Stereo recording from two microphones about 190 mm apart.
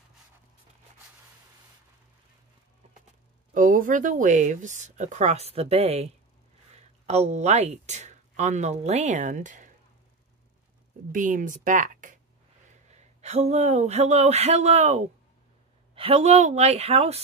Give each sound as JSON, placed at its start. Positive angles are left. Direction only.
{"t": 3.5, "sound": "speech", "side_deg": -45}
{"t": 11.1, "sound": "speech", "side_deg": -45}